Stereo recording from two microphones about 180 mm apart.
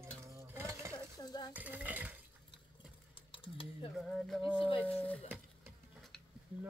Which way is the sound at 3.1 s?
30° left (ahead or behind).